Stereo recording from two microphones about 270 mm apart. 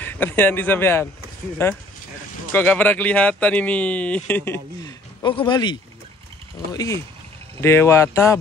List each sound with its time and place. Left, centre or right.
0.0 s a man's voice: centre